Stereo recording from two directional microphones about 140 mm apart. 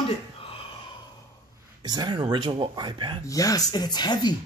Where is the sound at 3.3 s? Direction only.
25° left (ahead or behind).